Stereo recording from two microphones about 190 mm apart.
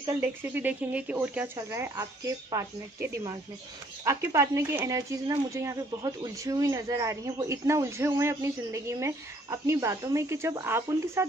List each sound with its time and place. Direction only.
0.2 s speech: 10° right (ahead or behind)